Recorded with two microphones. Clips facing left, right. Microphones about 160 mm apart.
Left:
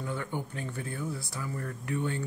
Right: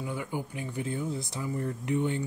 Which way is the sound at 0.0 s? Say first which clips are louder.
Right 1 dB; 10° right (ahead or behind).